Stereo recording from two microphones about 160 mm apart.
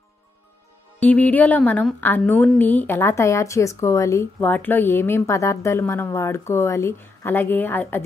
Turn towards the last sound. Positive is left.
turn(degrees=10)  # may be behind; listen again after turning